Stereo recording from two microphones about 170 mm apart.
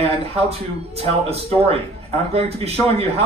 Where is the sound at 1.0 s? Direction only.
35° right (ahead or behind).